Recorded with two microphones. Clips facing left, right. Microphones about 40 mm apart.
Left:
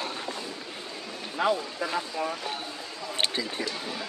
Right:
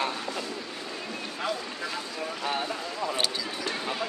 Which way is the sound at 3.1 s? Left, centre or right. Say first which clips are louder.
Left 1 dB; left.